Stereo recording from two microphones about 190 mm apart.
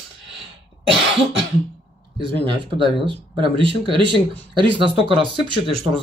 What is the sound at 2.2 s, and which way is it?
Speech, 25° right (ahead or behind).